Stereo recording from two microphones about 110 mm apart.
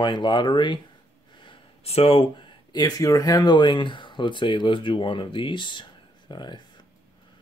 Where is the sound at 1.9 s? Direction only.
60° left (ahead or behind); by 6.6 s 45° left (ahead or behind).